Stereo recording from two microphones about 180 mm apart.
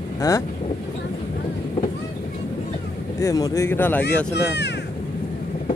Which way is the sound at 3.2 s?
20° left (ahead or behind).